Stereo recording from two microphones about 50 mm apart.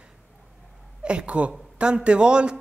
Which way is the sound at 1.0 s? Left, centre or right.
Right.